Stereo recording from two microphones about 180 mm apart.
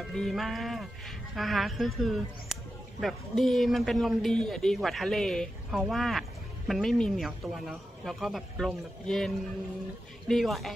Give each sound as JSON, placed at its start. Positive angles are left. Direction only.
{"t": 0.0, "sound": "speech", "side_deg": 0}